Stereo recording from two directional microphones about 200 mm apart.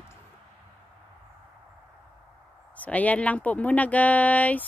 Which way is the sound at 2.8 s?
5° left (ahead or behind).